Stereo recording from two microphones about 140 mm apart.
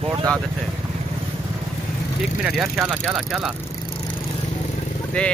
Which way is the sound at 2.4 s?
5° right (ahead or behind).